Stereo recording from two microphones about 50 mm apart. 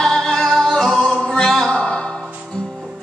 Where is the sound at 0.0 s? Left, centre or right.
Centre.